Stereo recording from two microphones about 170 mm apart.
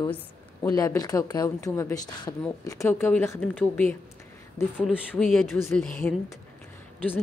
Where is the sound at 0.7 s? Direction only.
20° left (ahead or behind).